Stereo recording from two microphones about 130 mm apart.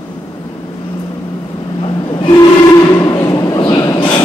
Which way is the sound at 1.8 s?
40° left (ahead or behind).